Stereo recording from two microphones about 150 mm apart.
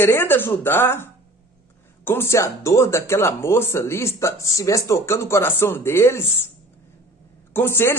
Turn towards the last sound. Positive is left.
turn(degrees=15)  # may be behind; listen again after turning